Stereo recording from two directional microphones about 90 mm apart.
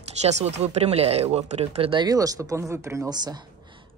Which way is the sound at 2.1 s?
40° right (ahead or behind).